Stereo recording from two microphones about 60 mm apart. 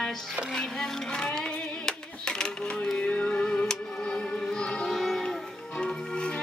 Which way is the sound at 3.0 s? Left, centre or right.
Centre.